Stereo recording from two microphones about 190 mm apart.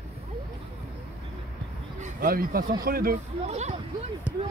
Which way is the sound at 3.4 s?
35° right (ahead or behind).